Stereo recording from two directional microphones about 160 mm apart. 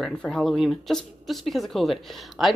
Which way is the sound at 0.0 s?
5° left (ahead or behind).